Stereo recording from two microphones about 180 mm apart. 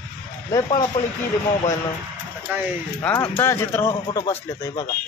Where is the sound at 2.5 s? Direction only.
10° right (ahead or behind).